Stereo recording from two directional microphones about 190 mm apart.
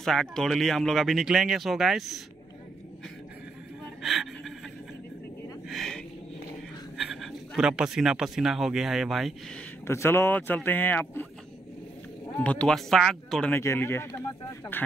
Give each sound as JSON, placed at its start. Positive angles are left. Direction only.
{"t": 0.0, "sound": "speech", "side_deg": 0}
{"t": 4.0, "sound": "a sound", "side_deg": 0}
{"t": 5.7, "sound": "a sound", "side_deg": 0}
{"t": 7.0, "sound": "speech", "side_deg": 0}
{"t": 9.8, "sound": "speech", "side_deg": 15}
{"t": 12.4, "sound": "speech", "side_deg": 5}